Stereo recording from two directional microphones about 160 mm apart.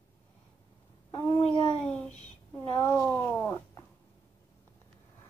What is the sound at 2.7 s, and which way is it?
Speech, 20° left (ahead or behind).